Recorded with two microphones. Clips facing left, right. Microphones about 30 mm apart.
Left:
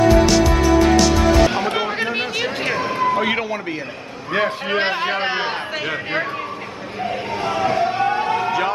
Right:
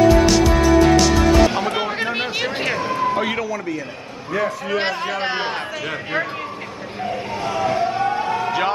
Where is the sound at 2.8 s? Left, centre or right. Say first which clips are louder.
Left 3 dB; centre.